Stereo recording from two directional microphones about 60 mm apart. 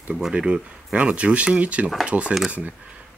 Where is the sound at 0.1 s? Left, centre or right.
Centre.